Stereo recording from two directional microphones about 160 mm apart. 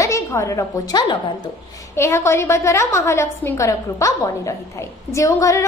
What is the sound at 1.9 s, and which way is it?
A woman's voice, 15° left (ahead or behind).